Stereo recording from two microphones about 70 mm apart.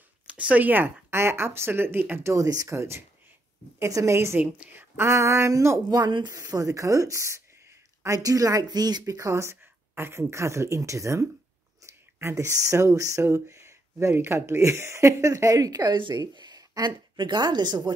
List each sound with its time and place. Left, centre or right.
0.3 s speech: centre
1.1 s speech: right
2.3 s speech: right
3.8 s speech: right
4.4 s speech: right
4.9 s speech: right
5.9 s speech: right
8.2 s speech: right
9.0 s speech: right